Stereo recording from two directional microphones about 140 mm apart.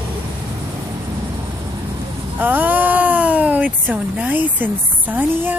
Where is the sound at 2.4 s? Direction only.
10° right (ahead or behind).